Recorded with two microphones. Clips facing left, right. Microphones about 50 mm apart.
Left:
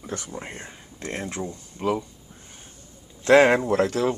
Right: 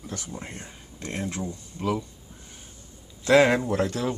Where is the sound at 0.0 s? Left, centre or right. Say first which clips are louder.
Left 4 dB; left.